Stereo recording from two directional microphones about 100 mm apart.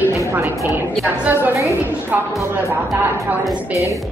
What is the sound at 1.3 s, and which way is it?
Speech, 20° right (ahead or behind).